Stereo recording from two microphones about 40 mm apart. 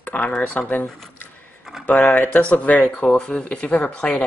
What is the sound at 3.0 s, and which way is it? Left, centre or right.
Speech, left.